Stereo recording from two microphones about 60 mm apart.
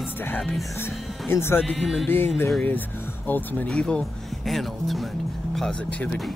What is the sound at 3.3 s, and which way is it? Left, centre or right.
Speech, left.